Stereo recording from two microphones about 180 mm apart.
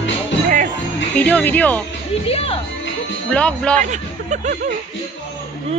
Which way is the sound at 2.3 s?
35° left (ahead or behind).